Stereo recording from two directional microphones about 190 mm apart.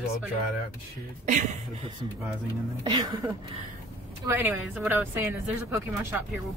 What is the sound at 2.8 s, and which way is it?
Speech, 20° right (ahead or behind).